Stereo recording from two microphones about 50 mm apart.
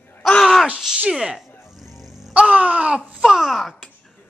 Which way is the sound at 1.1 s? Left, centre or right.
Centre.